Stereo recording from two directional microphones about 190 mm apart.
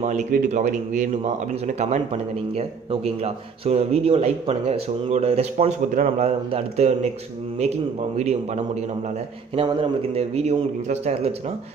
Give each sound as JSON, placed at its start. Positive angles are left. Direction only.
{"t": 0.0, "sound": "a man's voice", "side_deg": -40}
{"t": 8.2, "sound": "a man's voice", "side_deg": -35}